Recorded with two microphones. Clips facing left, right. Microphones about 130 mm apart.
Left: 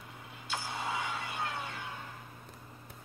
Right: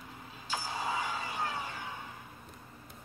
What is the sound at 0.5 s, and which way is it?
Vehicle, centre (ahead or behind).